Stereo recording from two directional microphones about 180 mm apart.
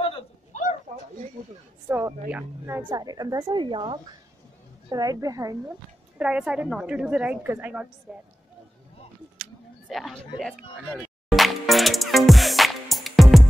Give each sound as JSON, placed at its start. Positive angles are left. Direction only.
{"t": 0.5, "sound": "a sound", "side_deg": 45}
{"t": 1.9, "sound": "a woman's voice", "side_deg": -10}
{"t": 6.1, "sound": "a woman's voice", "side_deg": -5}
{"t": 9.4, "sound": "speech", "side_deg": 0}
{"t": 11.0, "sound": "music", "side_deg": 0}